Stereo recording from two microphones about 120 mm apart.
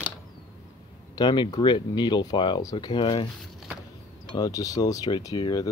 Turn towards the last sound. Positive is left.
turn(degrees=35)  # may be behind; listen again after turning